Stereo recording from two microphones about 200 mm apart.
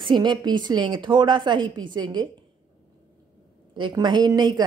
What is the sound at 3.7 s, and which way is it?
Speech, 25° right (ahead or behind).